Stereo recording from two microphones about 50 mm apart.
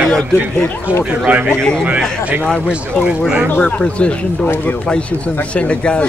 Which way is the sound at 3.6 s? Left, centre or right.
Left.